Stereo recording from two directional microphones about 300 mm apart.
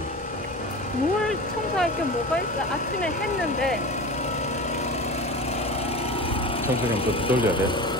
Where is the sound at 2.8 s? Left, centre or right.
Left.